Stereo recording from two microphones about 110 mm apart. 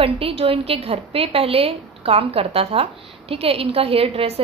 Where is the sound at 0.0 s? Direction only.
60° right (ahead or behind).